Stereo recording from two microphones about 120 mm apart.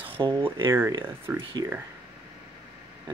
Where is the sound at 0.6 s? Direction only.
20° right (ahead or behind).